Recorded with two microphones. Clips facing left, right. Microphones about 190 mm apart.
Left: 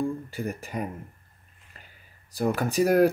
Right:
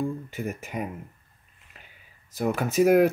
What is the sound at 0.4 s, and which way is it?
Speech, 5° right (ahead or behind).